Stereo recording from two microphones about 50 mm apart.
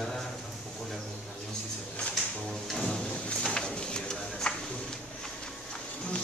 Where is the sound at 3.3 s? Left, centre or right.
Centre.